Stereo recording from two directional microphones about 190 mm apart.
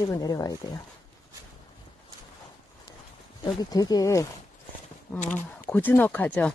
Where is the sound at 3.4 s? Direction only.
20° left (ahead or behind).